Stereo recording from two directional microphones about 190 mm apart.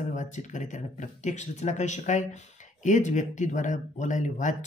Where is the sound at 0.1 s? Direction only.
40° left (ahead or behind).